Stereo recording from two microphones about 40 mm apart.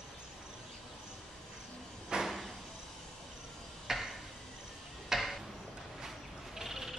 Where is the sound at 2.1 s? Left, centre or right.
Right.